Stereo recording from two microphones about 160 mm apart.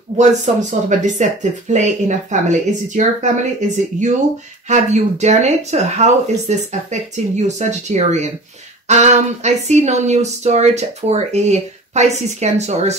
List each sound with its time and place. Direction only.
0.2 s speech: 50° right (ahead or behind)